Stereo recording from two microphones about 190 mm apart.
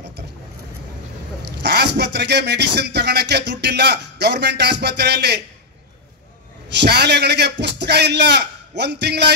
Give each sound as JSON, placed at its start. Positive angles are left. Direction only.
{"t": 1.6, "sound": "a man's voice", "side_deg": -65}
{"t": 6.7, "sound": "a man's voice", "side_deg": -60}